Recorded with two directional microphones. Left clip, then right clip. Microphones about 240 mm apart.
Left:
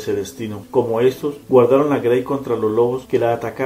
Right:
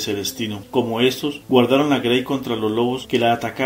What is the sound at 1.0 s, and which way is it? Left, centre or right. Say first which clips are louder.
Speech: left 2 dB; right.